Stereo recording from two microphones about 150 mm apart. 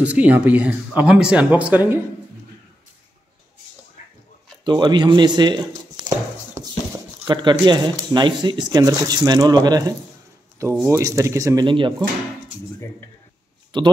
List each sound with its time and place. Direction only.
0.0 s speech: 10° right (ahead or behind)
4.6 s speech: 30° right (ahead or behind)
11.6 s speech: 35° right (ahead or behind)
13.7 s speech: 30° right (ahead or behind)